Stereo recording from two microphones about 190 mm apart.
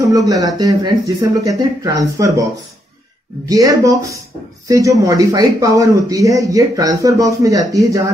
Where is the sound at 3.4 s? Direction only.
20° right (ahead or behind).